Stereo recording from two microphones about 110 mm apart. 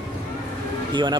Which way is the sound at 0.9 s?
45° right (ahead or behind).